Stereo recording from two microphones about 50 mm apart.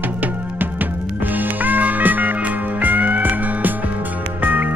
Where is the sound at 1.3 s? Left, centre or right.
Right.